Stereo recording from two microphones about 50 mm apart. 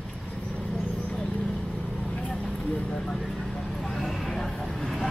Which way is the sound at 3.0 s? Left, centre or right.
Centre.